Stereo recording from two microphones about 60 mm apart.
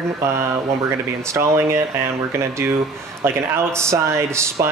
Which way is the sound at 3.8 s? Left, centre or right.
Right.